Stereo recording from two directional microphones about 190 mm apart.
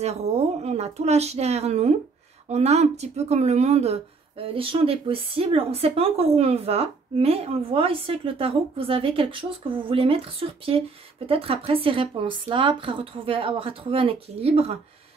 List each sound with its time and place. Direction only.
0.0 s a woman's voice: 35° right (ahead or behind)